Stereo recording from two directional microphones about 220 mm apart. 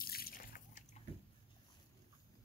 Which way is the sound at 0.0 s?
40° left (ahead or behind).